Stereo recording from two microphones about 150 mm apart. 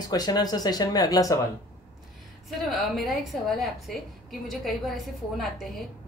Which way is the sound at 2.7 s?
Centre (ahead or behind).